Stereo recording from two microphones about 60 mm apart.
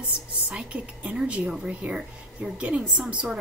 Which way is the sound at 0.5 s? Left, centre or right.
Centre.